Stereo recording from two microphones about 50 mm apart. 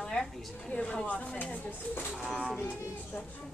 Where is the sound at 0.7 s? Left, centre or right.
Left.